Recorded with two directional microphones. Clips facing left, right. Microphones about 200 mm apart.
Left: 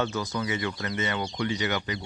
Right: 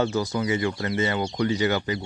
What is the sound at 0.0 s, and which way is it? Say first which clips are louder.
Speech: right 5 dB; 30° right (ahead or behind).